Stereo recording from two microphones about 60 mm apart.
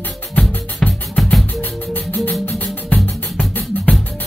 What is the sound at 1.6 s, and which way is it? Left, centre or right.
Music, left.